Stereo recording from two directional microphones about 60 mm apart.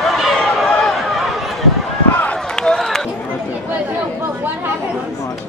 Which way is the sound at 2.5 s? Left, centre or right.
Centre.